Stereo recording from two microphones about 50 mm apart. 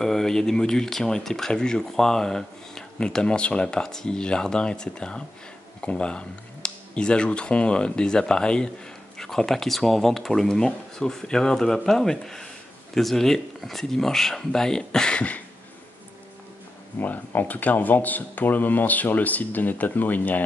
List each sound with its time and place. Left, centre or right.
0.0 s speech: centre; by 15.4 s left
17.0 s speech: left